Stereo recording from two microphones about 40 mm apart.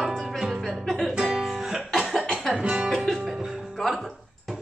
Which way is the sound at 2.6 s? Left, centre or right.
Right.